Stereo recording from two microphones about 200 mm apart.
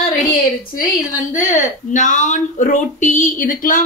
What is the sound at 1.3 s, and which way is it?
Speech, 40° left (ahead or behind).